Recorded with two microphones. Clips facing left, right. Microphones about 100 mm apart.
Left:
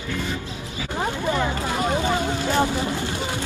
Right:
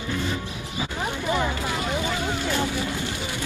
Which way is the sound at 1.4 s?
25° left (ahead or behind).